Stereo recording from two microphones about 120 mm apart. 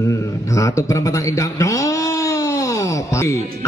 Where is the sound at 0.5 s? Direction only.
25° left (ahead or behind).